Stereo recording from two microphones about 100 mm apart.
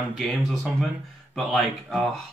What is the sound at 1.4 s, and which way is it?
Speech, centre (ahead or behind).